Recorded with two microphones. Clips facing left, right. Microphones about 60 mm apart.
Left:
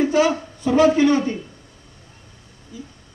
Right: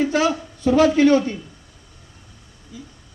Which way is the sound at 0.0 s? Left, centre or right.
Left.